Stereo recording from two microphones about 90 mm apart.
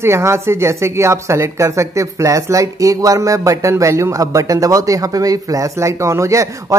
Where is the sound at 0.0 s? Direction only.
30° right (ahead or behind).